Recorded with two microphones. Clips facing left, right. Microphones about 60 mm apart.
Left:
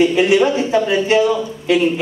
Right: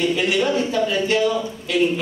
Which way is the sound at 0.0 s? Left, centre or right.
Left.